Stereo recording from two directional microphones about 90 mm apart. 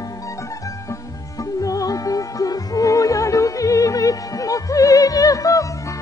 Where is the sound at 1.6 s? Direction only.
40° left (ahead or behind).